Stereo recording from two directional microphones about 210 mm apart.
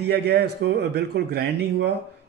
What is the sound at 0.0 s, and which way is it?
Speech, 50° right (ahead or behind).